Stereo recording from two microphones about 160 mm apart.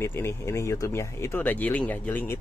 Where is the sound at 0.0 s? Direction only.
15° left (ahead or behind).